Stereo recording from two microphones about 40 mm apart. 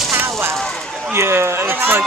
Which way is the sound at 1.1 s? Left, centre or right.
Right.